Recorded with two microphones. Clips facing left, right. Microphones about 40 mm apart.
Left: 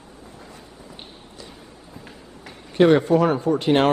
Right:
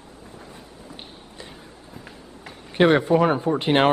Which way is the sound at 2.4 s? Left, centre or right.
Right.